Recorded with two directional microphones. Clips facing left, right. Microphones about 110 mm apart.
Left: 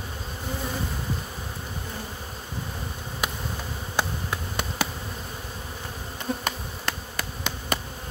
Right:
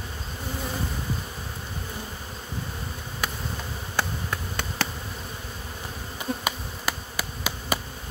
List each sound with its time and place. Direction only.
3.2 s bee: 15° left (ahead or behind)
3.9 s insect: 15° left (ahead or behind)
6.4 s insect: 5° right (ahead or behind)